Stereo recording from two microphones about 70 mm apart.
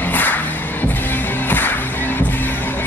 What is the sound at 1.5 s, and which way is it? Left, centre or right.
Music, left.